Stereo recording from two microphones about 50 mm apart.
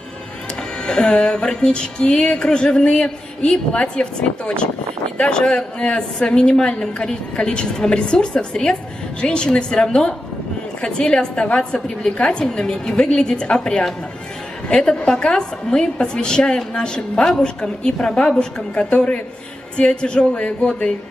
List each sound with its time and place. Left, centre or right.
0.8 s a woman's voice: centre